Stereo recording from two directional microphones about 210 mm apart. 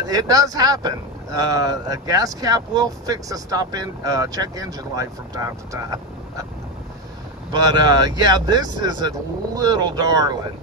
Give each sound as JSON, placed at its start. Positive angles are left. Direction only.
{"t": 0.0, "sound": "speech", "side_deg": -15}
{"t": 7.5, "sound": "speech", "side_deg": -20}